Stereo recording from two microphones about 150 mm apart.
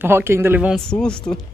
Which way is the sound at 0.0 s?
15° right (ahead or behind).